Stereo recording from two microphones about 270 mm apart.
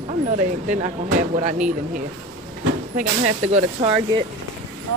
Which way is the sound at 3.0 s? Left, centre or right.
Right.